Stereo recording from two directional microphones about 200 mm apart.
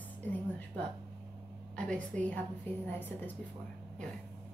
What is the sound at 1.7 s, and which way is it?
A woman's voice, 5° left (ahead or behind).